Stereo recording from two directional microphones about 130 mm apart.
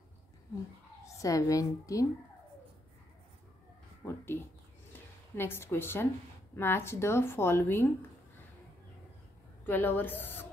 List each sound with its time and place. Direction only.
1.0 s speech: 25° left (ahead or behind)
4.0 s speech: 15° left (ahead or behind)
5.3 s a woman's voice: 15° left (ahead or behind)
9.7 s a woman's voice: 15° left (ahead or behind)